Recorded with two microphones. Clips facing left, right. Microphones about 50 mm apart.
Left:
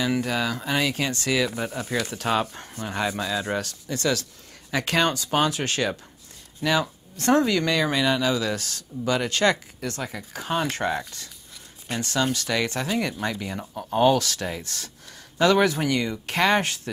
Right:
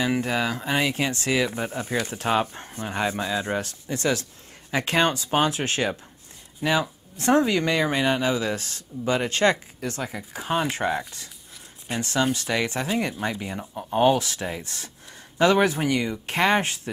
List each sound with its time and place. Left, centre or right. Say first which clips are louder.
0.0 s speech: right 1 dB; right
11.9 s speech: right 1 dB; right
13.6 s speech: even; centre
13.9 s speech: even; right